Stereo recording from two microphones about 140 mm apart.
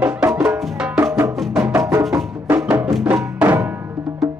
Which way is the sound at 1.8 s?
20° right (ahead or behind).